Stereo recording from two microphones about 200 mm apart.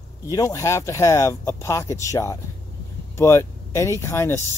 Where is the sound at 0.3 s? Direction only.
15° left (ahead or behind).